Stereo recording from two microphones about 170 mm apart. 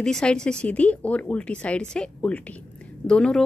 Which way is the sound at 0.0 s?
5° left (ahead or behind).